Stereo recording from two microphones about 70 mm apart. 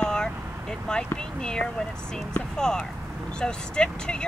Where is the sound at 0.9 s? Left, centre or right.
Centre.